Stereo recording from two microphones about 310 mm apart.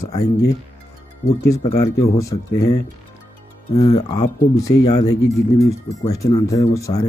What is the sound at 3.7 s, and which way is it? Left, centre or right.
Speech, left.